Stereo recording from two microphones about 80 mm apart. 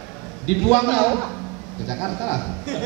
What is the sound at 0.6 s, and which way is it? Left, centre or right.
A man's voice, centre.